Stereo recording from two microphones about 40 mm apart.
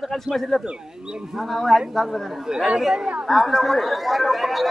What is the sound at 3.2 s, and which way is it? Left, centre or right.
Speech, centre.